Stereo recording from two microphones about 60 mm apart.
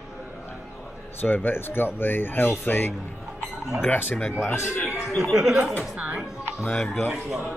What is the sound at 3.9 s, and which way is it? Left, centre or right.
Speech, left.